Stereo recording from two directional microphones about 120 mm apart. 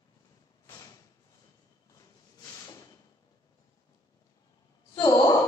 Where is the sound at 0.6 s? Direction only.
30° left (ahead or behind).